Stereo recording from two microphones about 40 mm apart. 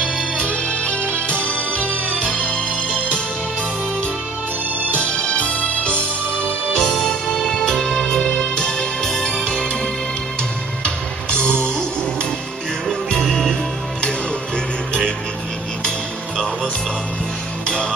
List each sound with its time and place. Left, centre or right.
0.4 s music: left
4.9 s music: left
6.8 s music: centre
11.2 s music: left
13.1 s music: centre